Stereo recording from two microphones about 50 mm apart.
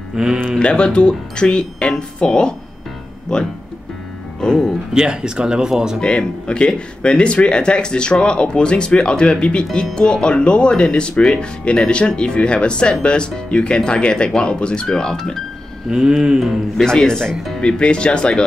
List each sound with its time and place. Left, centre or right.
0.1 s speech: centre
0.6 s speech: centre
4.9 s speech: centre
5.9 s speech: centre
15.9 s speech: centre
16.7 s speech: centre